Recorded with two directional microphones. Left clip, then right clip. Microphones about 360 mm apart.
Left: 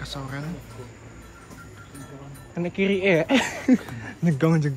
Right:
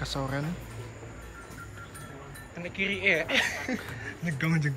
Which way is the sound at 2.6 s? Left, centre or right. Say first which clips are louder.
Left 5 dB; centre.